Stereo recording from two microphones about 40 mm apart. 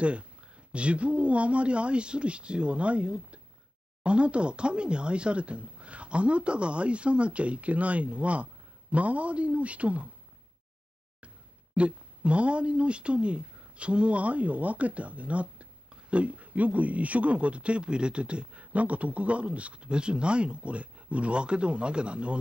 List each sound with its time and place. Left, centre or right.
0.0 s a woman's voice: right
11.7 s a woman's voice: right